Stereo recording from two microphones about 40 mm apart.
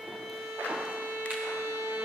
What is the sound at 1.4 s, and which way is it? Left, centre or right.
Music, right.